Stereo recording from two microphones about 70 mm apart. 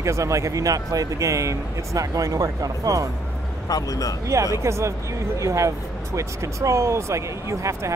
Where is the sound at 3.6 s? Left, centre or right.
Left.